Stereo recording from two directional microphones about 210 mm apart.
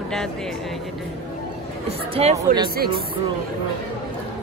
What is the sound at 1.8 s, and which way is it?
Speech, 30° right (ahead or behind).